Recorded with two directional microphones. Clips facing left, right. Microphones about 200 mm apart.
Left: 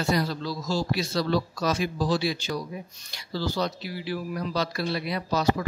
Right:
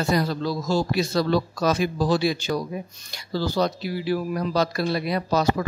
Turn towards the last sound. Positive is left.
turn(degrees=-45)  # may be behind; listen again after turning